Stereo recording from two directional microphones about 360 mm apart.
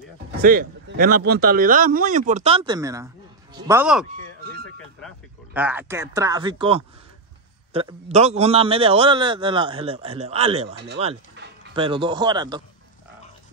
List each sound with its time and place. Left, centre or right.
0.4 s a man's voice: right